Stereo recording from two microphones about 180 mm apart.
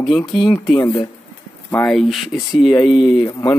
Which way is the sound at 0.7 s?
20° left (ahead or behind).